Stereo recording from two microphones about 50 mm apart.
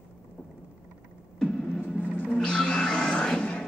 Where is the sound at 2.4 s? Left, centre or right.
Centre.